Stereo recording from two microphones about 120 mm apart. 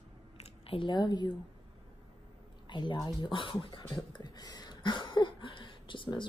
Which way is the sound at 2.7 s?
40° left (ahead or behind).